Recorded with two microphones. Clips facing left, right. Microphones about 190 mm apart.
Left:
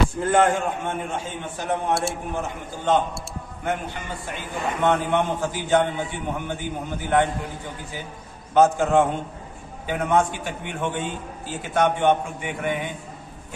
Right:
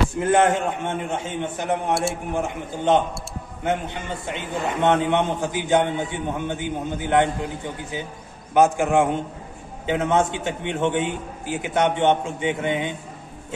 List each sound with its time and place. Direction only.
0.2 s a man's voice: 20° right (ahead or behind)
8.5 s a man's voice: 15° right (ahead or behind)